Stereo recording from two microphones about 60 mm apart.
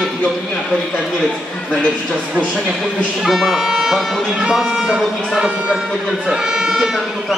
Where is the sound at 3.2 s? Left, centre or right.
Centre.